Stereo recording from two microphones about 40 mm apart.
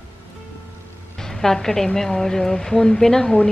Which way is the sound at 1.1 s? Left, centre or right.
Centre.